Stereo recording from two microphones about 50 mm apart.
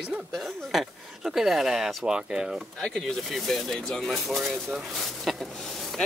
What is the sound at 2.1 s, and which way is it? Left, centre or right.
Speech, centre.